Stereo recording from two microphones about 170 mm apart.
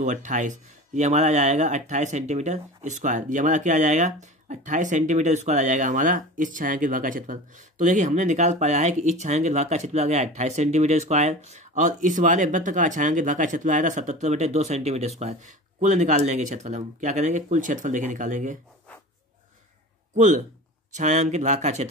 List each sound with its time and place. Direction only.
0.0 s speech: 45° right (ahead or behind)
20.2 s speech: 45° right (ahead or behind)